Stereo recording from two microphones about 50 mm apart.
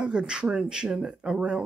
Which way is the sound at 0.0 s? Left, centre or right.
Centre.